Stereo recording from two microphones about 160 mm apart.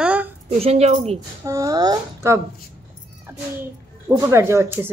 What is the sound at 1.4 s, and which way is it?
Speech, 20° right (ahead or behind).